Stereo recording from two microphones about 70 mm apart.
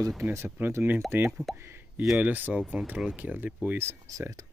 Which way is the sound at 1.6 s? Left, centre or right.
Right.